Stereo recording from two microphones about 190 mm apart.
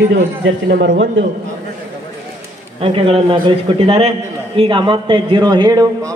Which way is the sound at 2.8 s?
30° right (ahead or behind).